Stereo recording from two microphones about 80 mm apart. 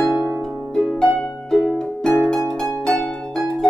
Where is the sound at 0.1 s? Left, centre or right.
Centre.